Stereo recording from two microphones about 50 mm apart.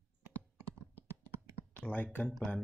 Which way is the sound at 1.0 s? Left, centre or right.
Right.